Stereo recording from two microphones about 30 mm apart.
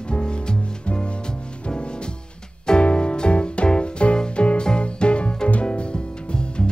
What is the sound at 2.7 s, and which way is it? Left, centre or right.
Music, left.